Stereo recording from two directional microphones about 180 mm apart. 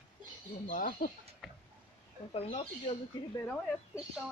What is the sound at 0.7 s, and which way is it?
Speech, 50° left (ahead or behind).